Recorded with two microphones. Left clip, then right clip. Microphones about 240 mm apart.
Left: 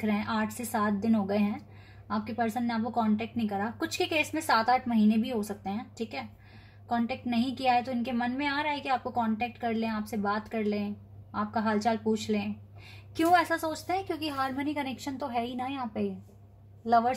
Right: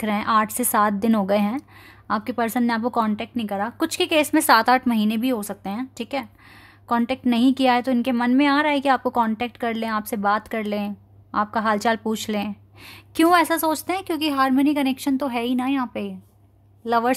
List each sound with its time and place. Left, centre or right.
0.0 s a woman's voice: right